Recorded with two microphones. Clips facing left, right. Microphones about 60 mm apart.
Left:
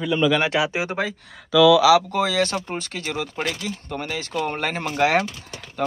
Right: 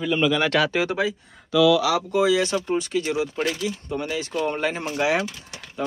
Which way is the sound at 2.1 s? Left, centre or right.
Left.